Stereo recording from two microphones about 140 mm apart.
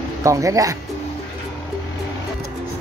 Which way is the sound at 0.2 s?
25° right (ahead or behind).